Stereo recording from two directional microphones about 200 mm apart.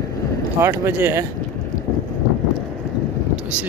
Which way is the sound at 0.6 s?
10° right (ahead or behind).